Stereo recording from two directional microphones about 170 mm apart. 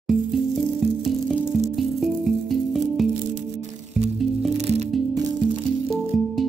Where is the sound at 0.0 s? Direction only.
Centre (ahead or behind).